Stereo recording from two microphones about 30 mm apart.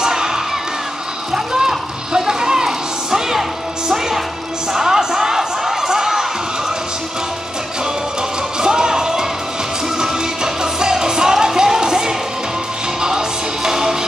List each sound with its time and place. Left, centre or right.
0.0 s crowd: right
1.3 s a sound: right
4.7 s crowd: centre
8.5 s music: right
13.7 s music: right